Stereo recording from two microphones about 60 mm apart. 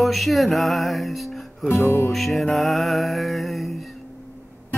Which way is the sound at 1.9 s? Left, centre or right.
Left.